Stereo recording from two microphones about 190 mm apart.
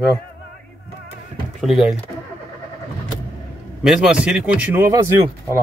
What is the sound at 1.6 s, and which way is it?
Speech, centre (ahead or behind).